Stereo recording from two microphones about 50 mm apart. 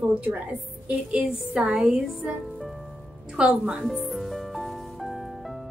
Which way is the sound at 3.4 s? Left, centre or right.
Right.